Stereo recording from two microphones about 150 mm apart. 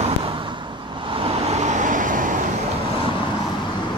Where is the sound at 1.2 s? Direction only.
50° right (ahead or behind).